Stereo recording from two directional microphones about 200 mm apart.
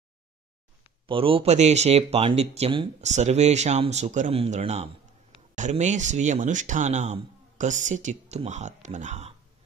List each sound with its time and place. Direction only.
1.0 s speech: 25° right (ahead or behind)